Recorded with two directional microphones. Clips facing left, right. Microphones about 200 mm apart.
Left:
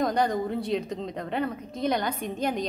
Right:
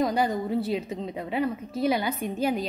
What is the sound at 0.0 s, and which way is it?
A woman's voice, 5° right (ahead or behind).